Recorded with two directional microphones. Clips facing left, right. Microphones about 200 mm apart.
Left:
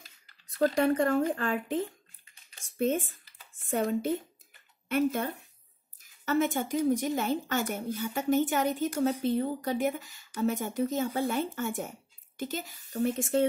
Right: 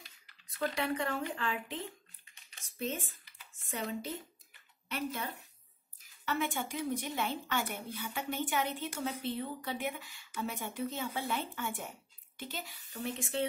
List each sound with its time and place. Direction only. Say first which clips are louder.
0.6 s a woman's voice: left 9 dB; 45° left (ahead or behind)